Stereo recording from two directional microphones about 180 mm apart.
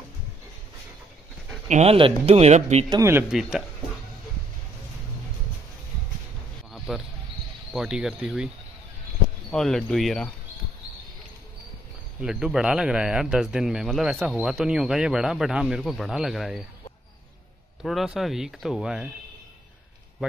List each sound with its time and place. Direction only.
1.7 s speech: 35° right (ahead or behind)
2.9 s speech: 15° right (ahead or behind)
3.3 s speech: centre (ahead or behind)
6.9 s speech: centre (ahead or behind)
9.5 s speech: 5° left (ahead or behind)
12.2 s speech: 5° right (ahead or behind)
17.8 s speech: centre (ahead or behind)